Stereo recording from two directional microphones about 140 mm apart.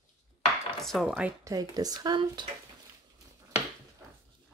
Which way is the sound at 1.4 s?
25° right (ahead or behind).